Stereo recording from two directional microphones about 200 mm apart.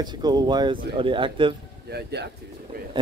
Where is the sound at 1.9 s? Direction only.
55° right (ahead or behind).